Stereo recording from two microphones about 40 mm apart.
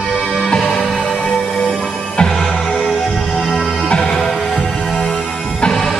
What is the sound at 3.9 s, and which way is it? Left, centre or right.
Music, centre.